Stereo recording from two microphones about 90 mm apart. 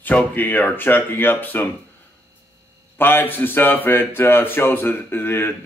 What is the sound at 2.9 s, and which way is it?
Speech, 25° left (ahead or behind).